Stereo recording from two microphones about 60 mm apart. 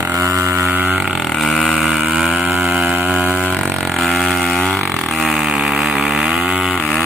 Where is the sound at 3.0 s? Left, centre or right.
Right.